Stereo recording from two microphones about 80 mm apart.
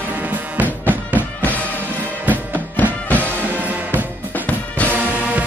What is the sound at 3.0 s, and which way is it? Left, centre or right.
Music, centre.